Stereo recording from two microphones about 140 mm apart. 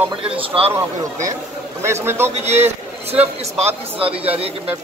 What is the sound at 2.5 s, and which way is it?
Speech, 50° right (ahead or behind).